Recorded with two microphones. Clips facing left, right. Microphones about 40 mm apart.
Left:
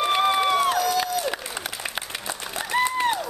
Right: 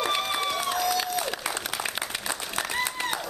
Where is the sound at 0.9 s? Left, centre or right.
Centre.